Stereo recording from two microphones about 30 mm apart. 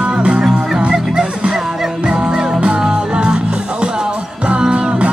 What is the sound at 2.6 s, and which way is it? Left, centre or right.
Music, right.